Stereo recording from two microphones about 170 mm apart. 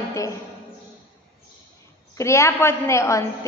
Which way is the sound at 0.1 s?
20° left (ahead or behind).